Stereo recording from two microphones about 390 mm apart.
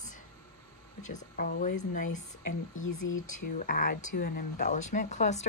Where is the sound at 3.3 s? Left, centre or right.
Left.